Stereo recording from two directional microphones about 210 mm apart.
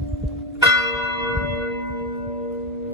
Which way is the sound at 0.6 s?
15° right (ahead or behind).